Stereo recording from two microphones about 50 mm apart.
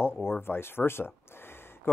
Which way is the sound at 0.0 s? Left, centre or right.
Left.